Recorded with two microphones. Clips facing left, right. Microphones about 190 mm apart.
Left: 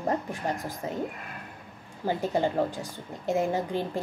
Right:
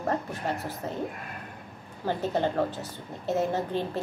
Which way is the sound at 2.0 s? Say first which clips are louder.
Left 1 dB; 10° left (ahead or behind).